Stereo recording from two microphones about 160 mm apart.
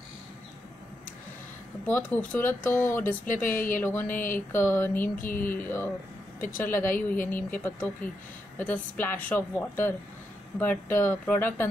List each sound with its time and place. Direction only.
1.9 s speech: 10° left (ahead or behind)
4.1 s speech: 55° left (ahead or behind)
4.5 s speech: 15° left (ahead or behind)